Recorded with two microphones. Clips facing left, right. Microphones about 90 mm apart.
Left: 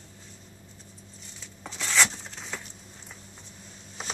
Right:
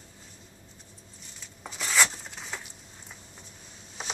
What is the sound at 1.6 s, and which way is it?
Rub, 5° right (ahead or behind).